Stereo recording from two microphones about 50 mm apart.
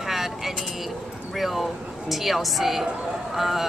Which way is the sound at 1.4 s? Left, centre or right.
Centre.